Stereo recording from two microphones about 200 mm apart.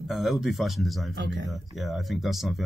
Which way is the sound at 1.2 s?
60° right (ahead or behind).